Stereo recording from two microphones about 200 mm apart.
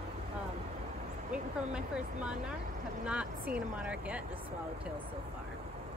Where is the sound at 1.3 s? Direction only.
5° right (ahead or behind).